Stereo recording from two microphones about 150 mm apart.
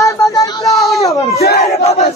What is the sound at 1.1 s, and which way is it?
Battle cry, 45° left (ahead or behind).